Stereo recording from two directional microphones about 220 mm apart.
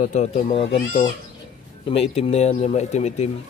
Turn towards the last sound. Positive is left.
turn(degrees=30)  # may be behind; listen again after turning